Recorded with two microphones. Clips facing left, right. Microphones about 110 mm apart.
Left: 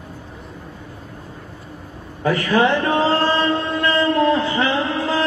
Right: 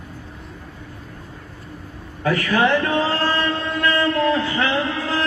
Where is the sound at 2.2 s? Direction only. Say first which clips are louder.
Left 2 dB; 25° left (ahead or behind).